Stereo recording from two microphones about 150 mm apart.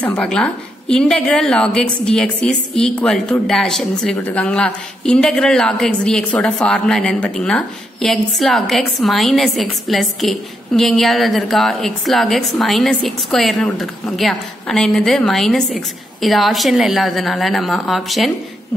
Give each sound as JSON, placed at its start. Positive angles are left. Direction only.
{"t": 0.0, "sound": "a woman's voice", "side_deg": 10}